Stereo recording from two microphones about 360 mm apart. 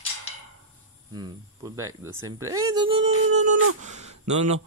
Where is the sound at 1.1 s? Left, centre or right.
Centre.